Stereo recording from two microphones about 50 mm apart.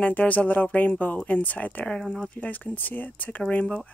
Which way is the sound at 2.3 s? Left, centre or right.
Left.